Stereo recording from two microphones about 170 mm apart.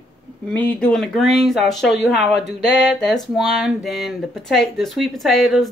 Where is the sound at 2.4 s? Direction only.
90° left.